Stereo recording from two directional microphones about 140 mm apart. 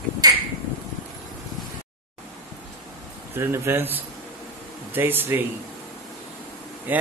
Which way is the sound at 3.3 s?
20° right (ahead or behind).